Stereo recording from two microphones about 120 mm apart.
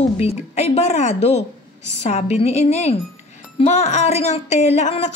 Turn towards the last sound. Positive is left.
turn(degrees=70)  # may be behind; listen again after turning